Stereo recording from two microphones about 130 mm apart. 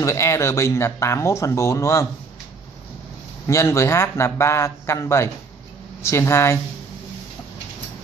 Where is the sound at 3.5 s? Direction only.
25° left (ahead or behind).